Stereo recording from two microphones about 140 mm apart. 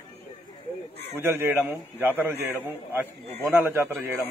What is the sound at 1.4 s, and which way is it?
A man's voice, 15° right (ahead or behind).